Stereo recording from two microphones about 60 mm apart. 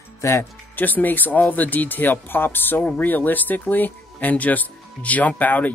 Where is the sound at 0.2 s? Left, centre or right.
Left.